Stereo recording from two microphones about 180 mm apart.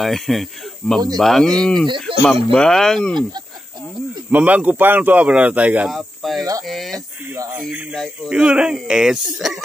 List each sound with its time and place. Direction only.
0.0 s speech: centre (ahead or behind)
4.3 s speech: 10° right (ahead or behind)
7.3 s speech: 15° right (ahead or behind)
7.6 s speech: centre (ahead or behind)